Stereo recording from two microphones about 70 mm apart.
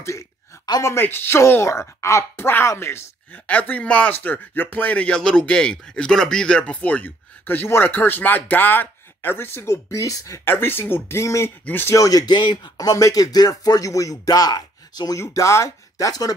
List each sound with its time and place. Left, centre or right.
1.0 s speech: left
1.5 s speech: left
3.4 s speech: centre; by 10.4 s left
10.4 s speech: left
11.6 s speech: left
11.9 s speech: left
15.1 s speech: left